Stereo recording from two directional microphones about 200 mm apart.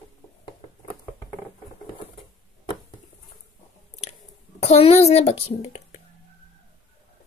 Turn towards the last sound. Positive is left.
turn(degrees=30)  # may be behind; listen again after turning